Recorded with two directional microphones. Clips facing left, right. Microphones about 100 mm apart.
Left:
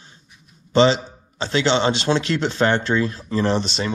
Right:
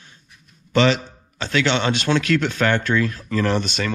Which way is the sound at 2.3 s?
20° left (ahead or behind).